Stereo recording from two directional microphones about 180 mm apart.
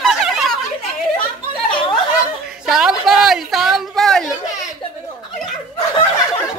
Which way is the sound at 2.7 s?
Centre (ahead or behind).